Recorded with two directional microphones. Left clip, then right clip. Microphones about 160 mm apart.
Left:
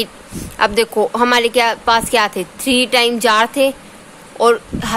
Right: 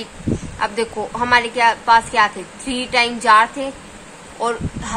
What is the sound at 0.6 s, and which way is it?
A woman's voice, 70° left (ahead or behind).